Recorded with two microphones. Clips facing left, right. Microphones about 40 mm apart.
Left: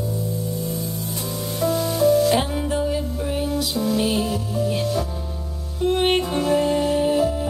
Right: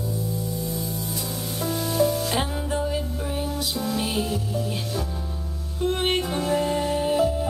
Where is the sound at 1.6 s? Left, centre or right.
Left.